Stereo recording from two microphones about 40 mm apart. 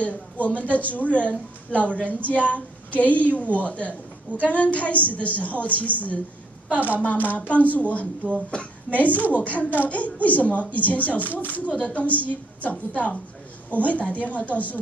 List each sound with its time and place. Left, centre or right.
0.0 s a woman's voice: left
8.9 s a woman's voice: left